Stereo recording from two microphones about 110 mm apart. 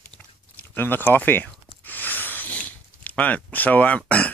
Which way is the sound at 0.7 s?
20° left (ahead or behind).